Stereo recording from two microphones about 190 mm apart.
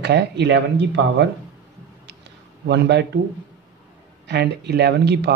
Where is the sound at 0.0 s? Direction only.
60° right (ahead or behind).